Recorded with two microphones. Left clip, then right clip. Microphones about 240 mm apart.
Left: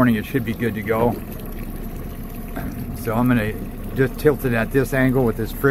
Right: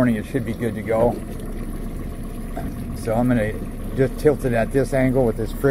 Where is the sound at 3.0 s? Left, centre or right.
Left.